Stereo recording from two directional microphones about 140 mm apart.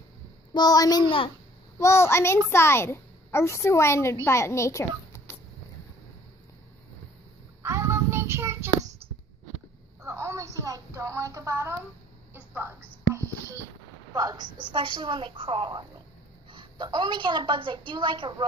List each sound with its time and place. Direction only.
0.5 s a child's voice: 30° left (ahead or behind)
1.8 s a child's voice: 20° left (ahead or behind)
7.6 s child singing: 20° right (ahead or behind)
10.0 s a sound: 20° right (ahead or behind)
14.1 s a woman's voice: 30° right (ahead or behind)